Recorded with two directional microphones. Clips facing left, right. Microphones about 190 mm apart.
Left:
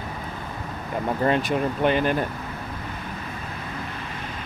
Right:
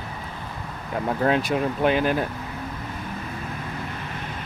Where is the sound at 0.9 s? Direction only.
Centre (ahead or behind).